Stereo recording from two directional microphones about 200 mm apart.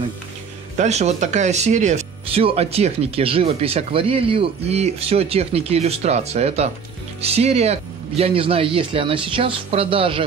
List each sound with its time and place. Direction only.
0.7 s speech: 35° right (ahead or behind)